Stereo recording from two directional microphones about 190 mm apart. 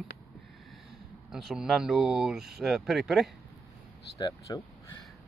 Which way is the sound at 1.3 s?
Centre (ahead or behind).